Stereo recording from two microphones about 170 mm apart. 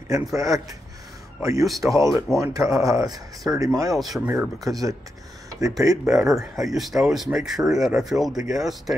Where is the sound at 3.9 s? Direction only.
Centre (ahead or behind).